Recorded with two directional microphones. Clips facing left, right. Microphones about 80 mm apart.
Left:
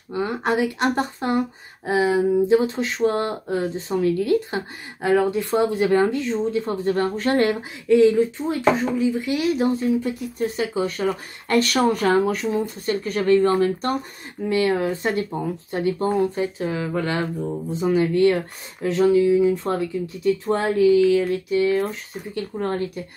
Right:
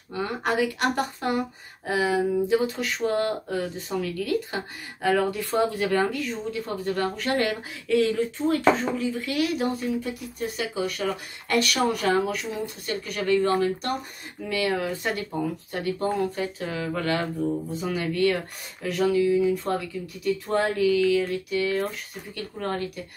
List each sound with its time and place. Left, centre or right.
0.1 s speech: left